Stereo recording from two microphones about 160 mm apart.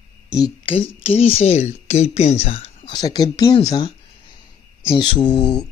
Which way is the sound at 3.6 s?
25° left (ahead or behind).